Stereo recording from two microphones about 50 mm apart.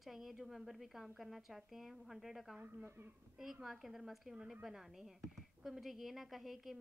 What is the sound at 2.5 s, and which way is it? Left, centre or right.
Speech, right.